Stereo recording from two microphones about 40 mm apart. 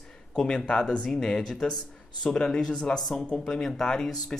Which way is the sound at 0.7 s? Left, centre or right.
Left.